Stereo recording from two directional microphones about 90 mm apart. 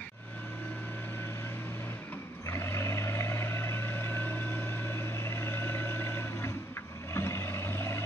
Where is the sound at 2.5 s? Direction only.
30° left (ahead or behind).